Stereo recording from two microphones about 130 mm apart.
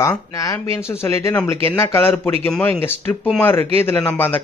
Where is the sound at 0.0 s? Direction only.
25° left (ahead or behind).